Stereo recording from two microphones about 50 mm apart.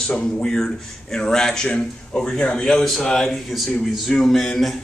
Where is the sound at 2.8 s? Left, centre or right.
Centre.